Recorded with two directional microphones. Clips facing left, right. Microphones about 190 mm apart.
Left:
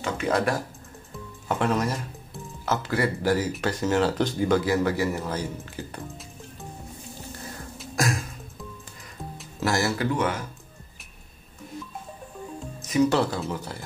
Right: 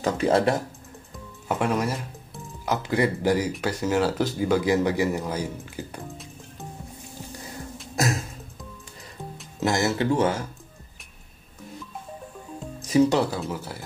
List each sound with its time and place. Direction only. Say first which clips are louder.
0.0 s speech: right 4 dB; 35° right (ahead or behind)
1.5 s speech: even; 10° right (ahead or behind)
7.9 s music: right 1 dB; 25° right (ahead or behind)
9.6 s speech: right 2 dB; 20° right (ahead or behind)
12.8 s music: right 3 dB; 30° right (ahead or behind)
13.1 s speech: even; 10° right (ahead or behind)